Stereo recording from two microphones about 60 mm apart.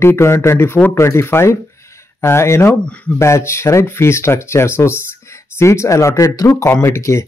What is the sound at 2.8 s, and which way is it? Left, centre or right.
Speech, left.